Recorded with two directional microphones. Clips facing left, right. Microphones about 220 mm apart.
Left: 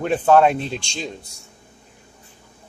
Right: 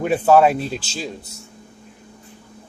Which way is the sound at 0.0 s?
10° right (ahead or behind).